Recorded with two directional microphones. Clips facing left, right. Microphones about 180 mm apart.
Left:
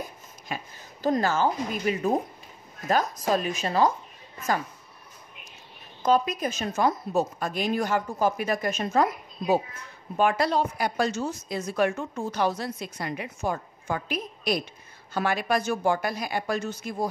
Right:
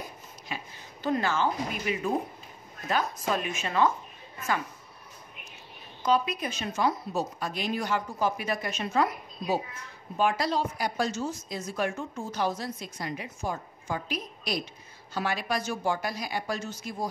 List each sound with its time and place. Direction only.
0.5 s a woman's voice: 45° left (ahead or behind)
6.0 s a woman's voice: 45° left (ahead or behind)
10.1 s a woman's voice: 55° left (ahead or behind)